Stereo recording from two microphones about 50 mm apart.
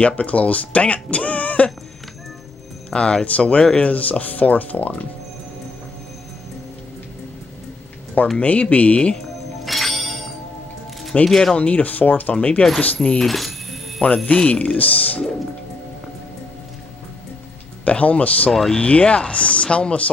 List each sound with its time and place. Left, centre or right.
0.0 s speech: left
2.9 s speech: left
8.4 s speech: left
9.7 s music: centre
11.2 s speech: centre
11.5 s speech: left
13.2 s music: centre
14.0 s speech: left
17.8 s speech: left
18.5 s speech: centre
18.8 s speech: left